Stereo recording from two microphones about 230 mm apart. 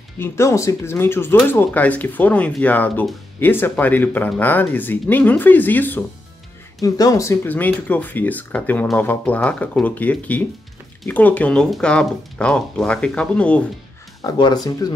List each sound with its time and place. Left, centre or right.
0.2 s speech: centre
14.2 s speech: centre